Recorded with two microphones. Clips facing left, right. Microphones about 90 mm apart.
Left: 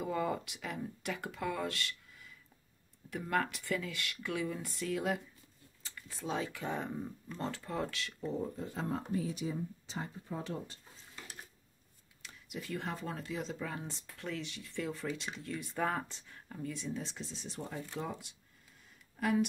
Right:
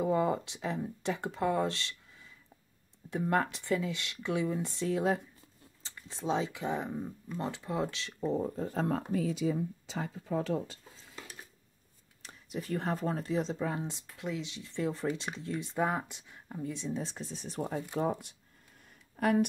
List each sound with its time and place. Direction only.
0.0 s speech: 25° right (ahead or behind)
3.1 s speech: 25° right (ahead or behind)
8.3 s speech: 40° right (ahead or behind)
8.8 s speech: 80° right
12.2 s speech: 35° right (ahead or behind)
17.0 s speech: 45° right (ahead or behind)